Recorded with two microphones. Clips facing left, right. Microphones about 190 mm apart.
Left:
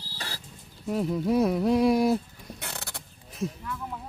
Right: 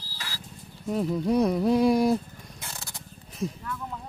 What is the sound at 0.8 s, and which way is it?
Speech, centre (ahead or behind).